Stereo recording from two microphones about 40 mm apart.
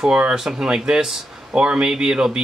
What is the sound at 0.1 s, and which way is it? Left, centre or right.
Speech, right.